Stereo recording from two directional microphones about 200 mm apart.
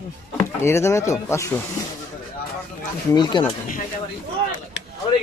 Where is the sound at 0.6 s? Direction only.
15° left (ahead or behind).